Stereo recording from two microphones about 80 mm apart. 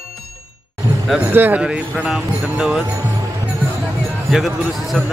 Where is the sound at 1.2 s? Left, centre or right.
Right.